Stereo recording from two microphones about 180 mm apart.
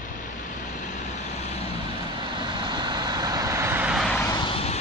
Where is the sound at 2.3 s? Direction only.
25° right (ahead or behind); by 4.2 s centre (ahead or behind).